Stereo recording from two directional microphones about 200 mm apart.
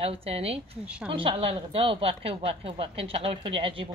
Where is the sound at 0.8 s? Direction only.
5° right (ahead or behind).